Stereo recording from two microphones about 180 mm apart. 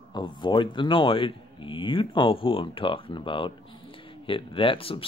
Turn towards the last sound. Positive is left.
turn(degrees=30)  # may be behind; listen again after turning